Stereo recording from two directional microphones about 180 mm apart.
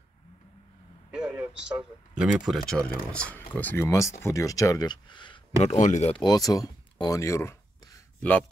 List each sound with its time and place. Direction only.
1.1 s speech: 5° right (ahead or behind); by 5.4 s 25° left (ahead or behind)
5.6 s speech: 40° left (ahead or behind)
6.2 s speech: 20° left (ahead or behind)
8.2 s a man's voice: 5° left (ahead or behind)